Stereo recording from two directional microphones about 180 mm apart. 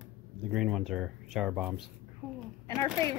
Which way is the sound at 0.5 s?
Centre (ahead or behind).